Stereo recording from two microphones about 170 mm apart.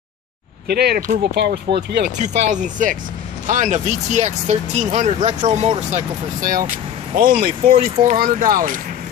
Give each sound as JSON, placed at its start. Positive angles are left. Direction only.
{"t": 0.7, "sound": "speech", "side_deg": -70}
{"t": 1.3, "sound": "speech", "side_deg": -75}
{"t": 2.1, "sound": "speech", "side_deg": -45}